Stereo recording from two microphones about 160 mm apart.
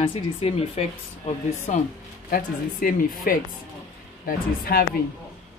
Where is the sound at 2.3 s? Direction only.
60° left (ahead or behind).